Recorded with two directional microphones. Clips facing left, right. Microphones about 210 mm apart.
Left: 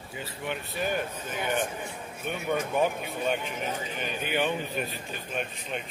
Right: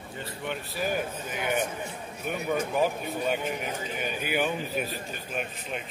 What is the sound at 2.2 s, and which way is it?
A man's voice, 5° right (ahead or behind).